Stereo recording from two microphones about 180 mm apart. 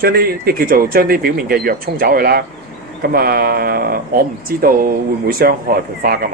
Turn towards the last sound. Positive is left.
turn(degrees=-55)  # may be behind; listen again after turning